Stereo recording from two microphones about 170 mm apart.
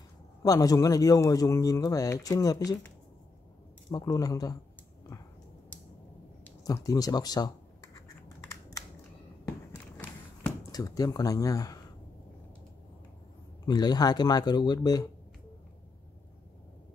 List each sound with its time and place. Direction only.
0.4 s speech: 20° left (ahead or behind)
3.9 s speech: 20° left (ahead or behind)
6.6 s speech: 20° left (ahead or behind)
9.5 s a sound: 15° left (ahead or behind)
13.7 s speech: 25° left (ahead or behind)